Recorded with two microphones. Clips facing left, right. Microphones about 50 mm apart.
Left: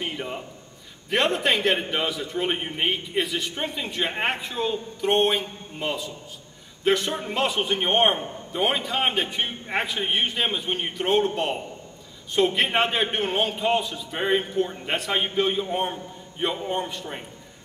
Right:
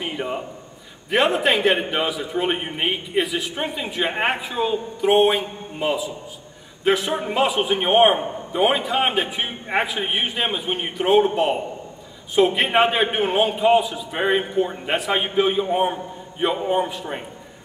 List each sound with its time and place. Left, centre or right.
0.0 s a man's voice: centre
8.2 s a man's voice: centre
8.5 s a man's voice: centre